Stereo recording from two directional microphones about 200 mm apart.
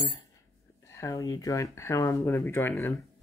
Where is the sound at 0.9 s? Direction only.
15° left (ahead or behind).